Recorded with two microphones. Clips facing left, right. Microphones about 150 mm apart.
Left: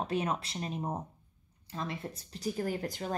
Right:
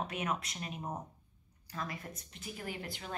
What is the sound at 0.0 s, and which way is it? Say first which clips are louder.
Speech: left 5 dB; 30° left (ahead or behind).